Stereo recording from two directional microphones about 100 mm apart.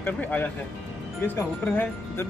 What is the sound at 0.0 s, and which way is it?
Speech, 15° left (ahead or behind).